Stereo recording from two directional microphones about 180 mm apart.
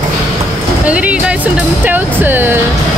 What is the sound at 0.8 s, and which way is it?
Speech, 5° right (ahead or behind).